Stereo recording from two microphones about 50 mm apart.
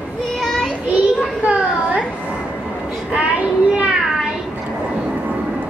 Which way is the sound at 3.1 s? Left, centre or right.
Centre.